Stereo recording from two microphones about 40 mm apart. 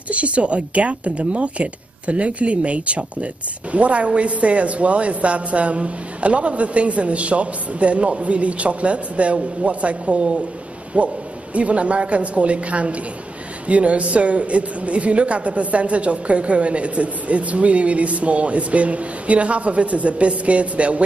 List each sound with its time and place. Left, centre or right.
0.1 s a woman's voice: right